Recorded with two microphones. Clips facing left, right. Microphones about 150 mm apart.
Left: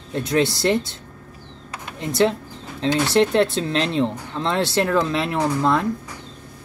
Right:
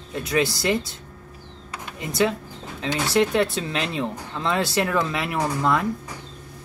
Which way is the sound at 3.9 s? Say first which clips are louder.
Left 5 dB; 30° left (ahead or behind).